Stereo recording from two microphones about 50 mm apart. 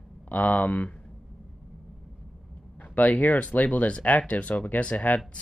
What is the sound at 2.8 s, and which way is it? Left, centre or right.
Speech, left.